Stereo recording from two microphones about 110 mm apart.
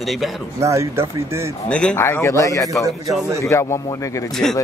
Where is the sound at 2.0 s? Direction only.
20° left (ahead or behind).